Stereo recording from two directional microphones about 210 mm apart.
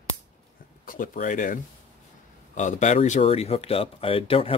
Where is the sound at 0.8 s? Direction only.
40° left (ahead or behind).